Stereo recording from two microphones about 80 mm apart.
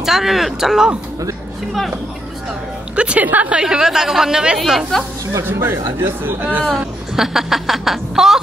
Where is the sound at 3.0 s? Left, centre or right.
Centre.